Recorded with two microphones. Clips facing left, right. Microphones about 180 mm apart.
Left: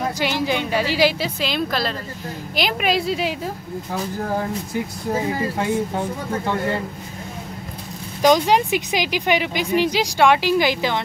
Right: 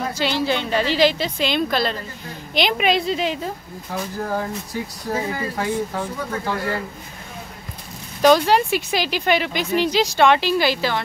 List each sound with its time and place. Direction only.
0.2 s a woman's voice: 15° left (ahead or behind)
5.3 s speech: 25° left (ahead or behind)
8.2 s speech: 15° left (ahead or behind)